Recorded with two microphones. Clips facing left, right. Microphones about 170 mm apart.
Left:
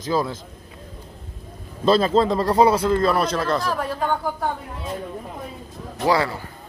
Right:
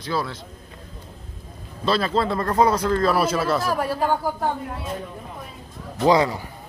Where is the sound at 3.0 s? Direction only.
5° right (ahead or behind).